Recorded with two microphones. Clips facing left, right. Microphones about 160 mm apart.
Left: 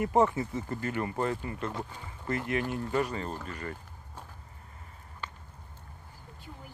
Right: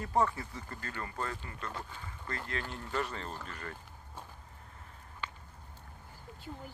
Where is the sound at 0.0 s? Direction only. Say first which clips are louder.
Left 6 dB; 20° left (ahead or behind); by 3.7 s 5° left (ahead or behind).